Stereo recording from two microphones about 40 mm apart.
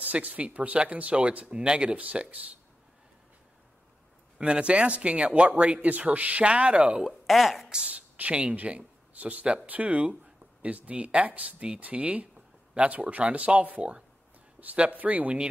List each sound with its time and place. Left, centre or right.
0.0 s speech: right
4.4 s speech: right
7.0 s speech: centre
7.9 s speech: right